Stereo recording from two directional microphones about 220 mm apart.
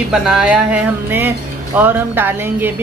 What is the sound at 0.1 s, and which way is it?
Speech, centre (ahead or behind).